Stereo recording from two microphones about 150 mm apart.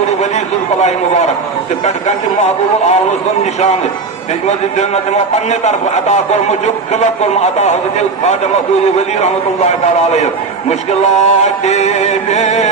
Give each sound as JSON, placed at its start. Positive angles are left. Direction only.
{"t": 0.7, "sound": "a man's voice", "side_deg": 50}
{"t": 4.5, "sound": "a man's voice", "side_deg": 50}
{"t": 8.9, "sound": "a man's voice", "side_deg": 45}